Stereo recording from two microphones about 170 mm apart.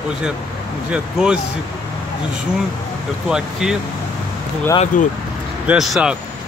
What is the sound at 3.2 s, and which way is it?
Speech, 5° right (ahead or behind).